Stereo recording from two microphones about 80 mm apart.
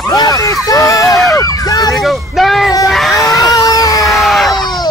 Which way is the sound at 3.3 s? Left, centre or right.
Left.